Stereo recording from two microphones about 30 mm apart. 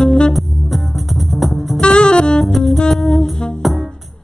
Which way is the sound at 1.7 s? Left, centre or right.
Left.